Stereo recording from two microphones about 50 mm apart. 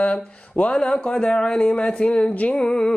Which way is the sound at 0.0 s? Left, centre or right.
Left.